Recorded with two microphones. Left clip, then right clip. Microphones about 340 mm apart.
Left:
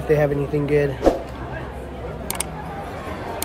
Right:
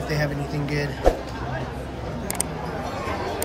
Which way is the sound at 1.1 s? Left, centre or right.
Centre.